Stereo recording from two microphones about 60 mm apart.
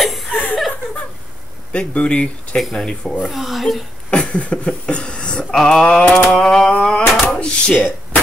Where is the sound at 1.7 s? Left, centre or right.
Centre.